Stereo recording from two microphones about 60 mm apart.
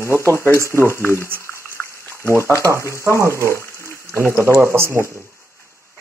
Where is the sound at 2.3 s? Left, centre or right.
Left.